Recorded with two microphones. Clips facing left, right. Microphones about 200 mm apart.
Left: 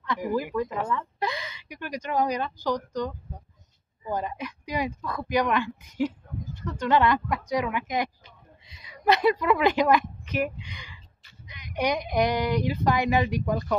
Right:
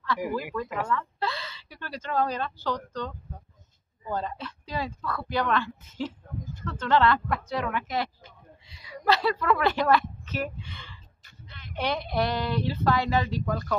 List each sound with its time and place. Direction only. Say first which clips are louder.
0.7 s a woman's voice: even; 15° left (ahead or behind)
4.1 s a woman's voice: left 2 dB; 15° left (ahead or behind)